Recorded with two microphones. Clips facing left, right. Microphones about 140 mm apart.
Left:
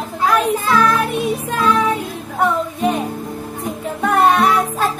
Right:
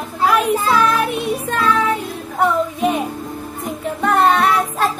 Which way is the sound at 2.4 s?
5° right (ahead or behind).